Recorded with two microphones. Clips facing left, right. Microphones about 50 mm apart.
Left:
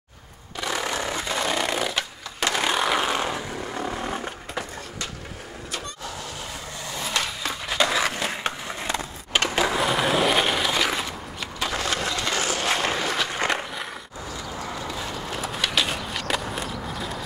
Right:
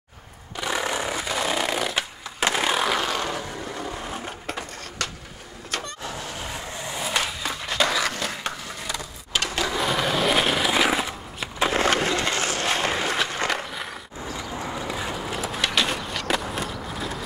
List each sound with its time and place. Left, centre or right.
0.6 s a sound: centre
2.5 s vehicle: centre
3.0 s vehicle: centre
6.0 s vehicle: right
7.0 s skateboard: centre
7.9 s skateboard: centre; by 9.5 s left
9.8 s a sound: centre
11.6 s skateboard: right
12.8 s a sound: centre
13.4 s skateboard: centre
14.9 s a sound: centre
15.2 s skateboard: centre